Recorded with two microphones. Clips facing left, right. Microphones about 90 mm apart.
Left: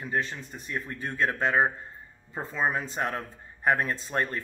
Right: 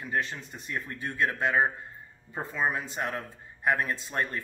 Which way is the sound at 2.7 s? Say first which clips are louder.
Left 2 dB; 35° left (ahead or behind).